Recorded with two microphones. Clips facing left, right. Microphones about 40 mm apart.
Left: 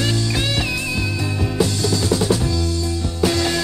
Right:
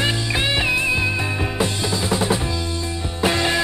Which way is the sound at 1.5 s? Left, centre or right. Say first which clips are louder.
Left 5 dB; right.